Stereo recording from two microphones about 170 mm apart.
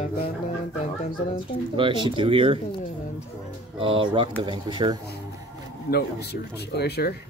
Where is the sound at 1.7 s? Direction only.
30° right (ahead or behind).